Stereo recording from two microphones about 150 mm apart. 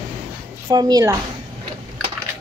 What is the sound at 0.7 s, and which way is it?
Speech, 25° right (ahead or behind).